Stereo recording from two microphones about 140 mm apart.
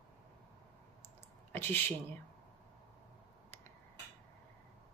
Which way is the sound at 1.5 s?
15° left (ahead or behind).